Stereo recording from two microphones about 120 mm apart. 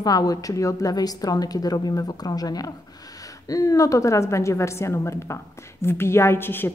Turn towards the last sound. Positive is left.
turn(degrees=20)  # may be behind; listen again after turning